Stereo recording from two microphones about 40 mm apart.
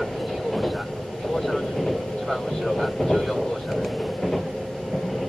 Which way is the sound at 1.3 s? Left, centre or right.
Centre.